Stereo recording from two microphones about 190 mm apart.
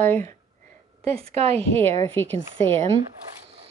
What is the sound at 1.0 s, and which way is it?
Speech, 30° right (ahead or behind).